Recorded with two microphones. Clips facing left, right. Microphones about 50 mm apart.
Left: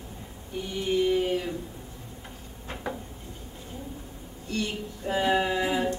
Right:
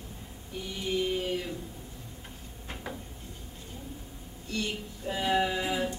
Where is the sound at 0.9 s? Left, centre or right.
Centre.